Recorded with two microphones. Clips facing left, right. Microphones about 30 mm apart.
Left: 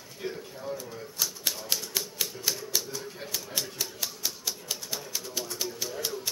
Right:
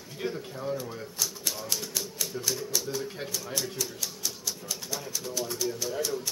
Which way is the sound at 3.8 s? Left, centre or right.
Left.